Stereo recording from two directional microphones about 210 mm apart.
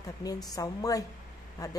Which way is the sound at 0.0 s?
15° left (ahead or behind).